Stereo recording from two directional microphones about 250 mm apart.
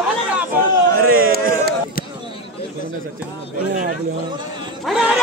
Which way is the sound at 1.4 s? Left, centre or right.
Right.